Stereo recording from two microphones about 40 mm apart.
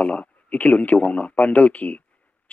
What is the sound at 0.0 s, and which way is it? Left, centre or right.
Speech, left.